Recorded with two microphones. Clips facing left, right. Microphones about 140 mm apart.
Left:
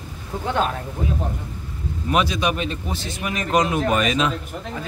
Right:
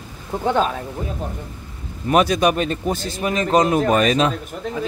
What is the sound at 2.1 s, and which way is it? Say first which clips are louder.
Speech: right 5 dB; 45° right (ahead or behind).